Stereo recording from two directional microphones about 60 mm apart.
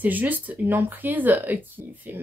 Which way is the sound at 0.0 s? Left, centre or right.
Right.